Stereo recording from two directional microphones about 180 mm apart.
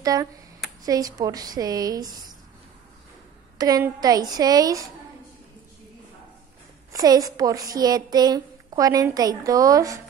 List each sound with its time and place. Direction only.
0.0 s a woman's voice: 20° right (ahead or behind)
3.5 s a woman's voice: 20° right (ahead or behind)
6.9 s a woman's voice: 20° right (ahead or behind)